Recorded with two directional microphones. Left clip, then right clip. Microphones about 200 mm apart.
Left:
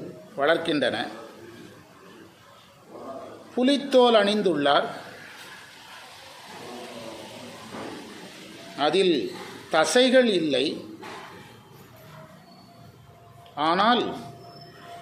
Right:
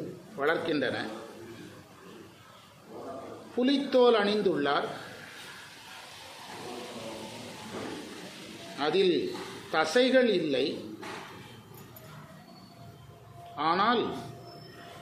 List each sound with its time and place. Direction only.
0.4 s a man's voice: 40° left (ahead or behind)
3.5 s a man's voice: 40° left (ahead or behind)
8.7 s a man's voice: 40° left (ahead or behind)
13.6 s a man's voice: 40° left (ahead or behind)